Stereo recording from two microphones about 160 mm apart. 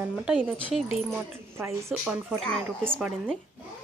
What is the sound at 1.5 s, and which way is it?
Speech, 15° right (ahead or behind).